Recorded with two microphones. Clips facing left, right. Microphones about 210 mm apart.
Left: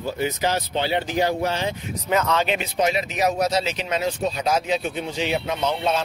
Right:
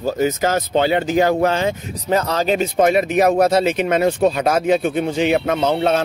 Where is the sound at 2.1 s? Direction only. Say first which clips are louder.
Right 4 dB; 35° right (ahead or behind).